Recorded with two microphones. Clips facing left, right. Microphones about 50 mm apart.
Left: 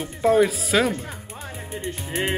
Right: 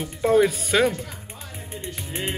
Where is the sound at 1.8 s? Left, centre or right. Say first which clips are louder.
Left 4 dB; left.